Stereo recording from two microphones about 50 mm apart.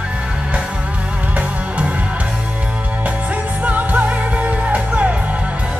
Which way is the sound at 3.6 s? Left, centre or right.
Right.